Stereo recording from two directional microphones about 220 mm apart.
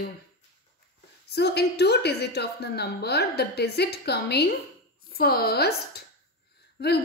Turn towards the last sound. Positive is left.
turn(degrees=45)  # may be behind; listen again after turning